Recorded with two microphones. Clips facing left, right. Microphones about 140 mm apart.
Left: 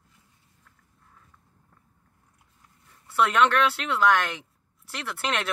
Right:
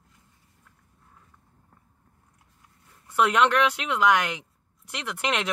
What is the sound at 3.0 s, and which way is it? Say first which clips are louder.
A woman's voice: even; 15° right (ahead or behind).